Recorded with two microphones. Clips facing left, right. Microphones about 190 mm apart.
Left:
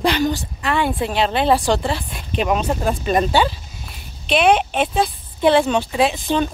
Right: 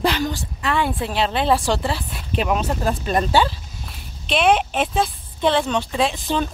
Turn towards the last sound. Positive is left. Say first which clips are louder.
# left 3 dB
turn(degrees=0)  # may be behind; listen again after turning